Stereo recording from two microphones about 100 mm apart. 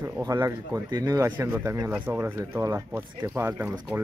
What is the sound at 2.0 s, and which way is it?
A man's voice, 20° right (ahead or behind).